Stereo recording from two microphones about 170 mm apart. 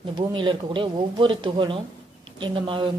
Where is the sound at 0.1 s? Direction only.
30° right (ahead or behind).